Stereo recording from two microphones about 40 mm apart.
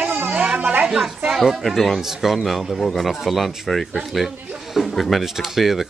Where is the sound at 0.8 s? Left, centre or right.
Centre.